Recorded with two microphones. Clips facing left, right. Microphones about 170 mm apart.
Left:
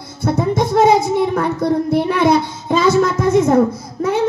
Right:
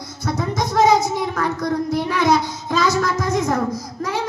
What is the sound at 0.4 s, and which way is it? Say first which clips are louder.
Music: left 6 dB; 30° left (ahead or behind).